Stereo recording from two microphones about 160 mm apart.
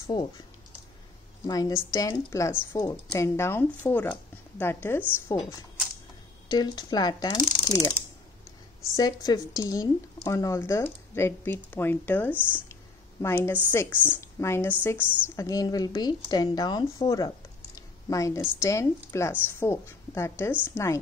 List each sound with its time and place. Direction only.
0.0 s speech: 25° left (ahead or behind)
1.5 s a woman's voice: 20° left (ahead or behind)
6.5 s a woman's voice: 25° left (ahead or behind)
8.9 s a woman's voice: 25° left (ahead or behind)
17.7 s a sound: 20° left (ahead or behind)
18.6 s speech: 20° left (ahead or behind)